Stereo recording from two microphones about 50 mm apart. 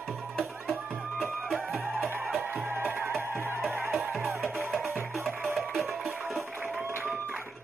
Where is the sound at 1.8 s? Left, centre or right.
Right.